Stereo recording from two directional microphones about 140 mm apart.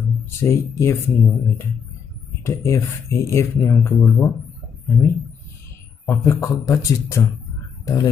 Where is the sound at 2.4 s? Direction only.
20° left (ahead or behind).